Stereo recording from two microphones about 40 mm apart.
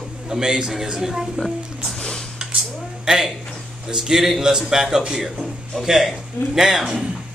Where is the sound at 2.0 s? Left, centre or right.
Centre.